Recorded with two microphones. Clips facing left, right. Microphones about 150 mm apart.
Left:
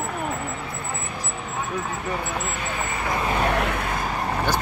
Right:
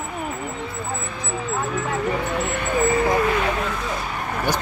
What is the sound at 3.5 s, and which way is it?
Vehicle, 65° left (ahead or behind).